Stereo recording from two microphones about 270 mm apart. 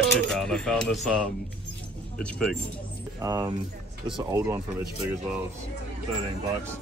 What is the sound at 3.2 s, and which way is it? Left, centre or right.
Speech, centre.